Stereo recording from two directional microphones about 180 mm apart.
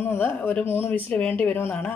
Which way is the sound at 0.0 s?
10° left (ahead or behind).